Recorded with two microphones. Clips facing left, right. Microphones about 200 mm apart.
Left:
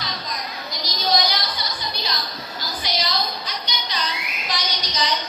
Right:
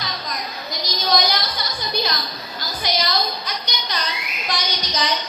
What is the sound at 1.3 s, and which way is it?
Music, 50° right (ahead or behind).